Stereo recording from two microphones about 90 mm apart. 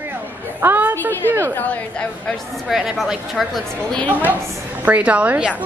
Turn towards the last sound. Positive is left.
turn(degrees=-15)  # may be behind; listen again after turning